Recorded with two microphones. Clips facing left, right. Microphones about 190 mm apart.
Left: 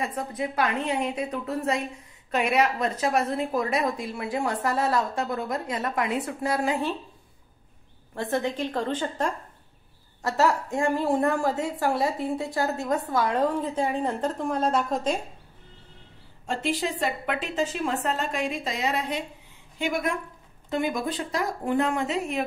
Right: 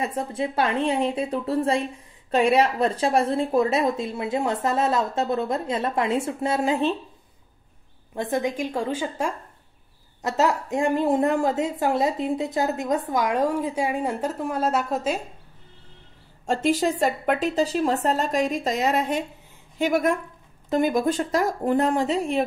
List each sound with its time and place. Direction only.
0.0 s a woman's voice: 25° right (ahead or behind)
8.1 s a woman's voice: 15° right (ahead or behind)
10.2 s a woman's voice: 20° right (ahead or behind)
16.4 s a woman's voice: 45° right (ahead or behind)